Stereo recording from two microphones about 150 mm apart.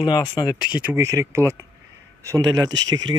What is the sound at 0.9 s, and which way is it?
Speech, 20° right (ahead or behind).